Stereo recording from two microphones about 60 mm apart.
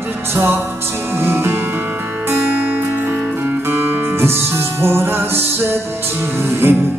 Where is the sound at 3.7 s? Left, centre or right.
Right.